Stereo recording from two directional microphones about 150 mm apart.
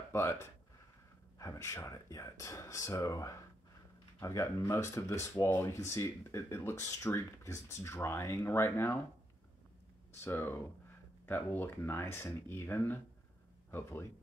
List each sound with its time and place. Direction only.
0.1 s speech: 15° left (ahead or behind)
10.2 s speech: 15° left (ahead or behind)